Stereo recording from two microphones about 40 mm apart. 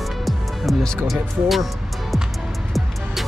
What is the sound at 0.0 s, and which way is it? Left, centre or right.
Music, centre.